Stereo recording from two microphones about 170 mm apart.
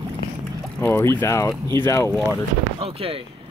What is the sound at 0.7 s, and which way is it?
Speech, 10° left (ahead or behind).